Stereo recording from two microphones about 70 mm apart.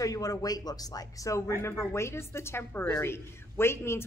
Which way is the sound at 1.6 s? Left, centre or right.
Left.